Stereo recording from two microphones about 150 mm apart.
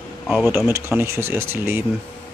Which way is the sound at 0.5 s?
15° right (ahead or behind).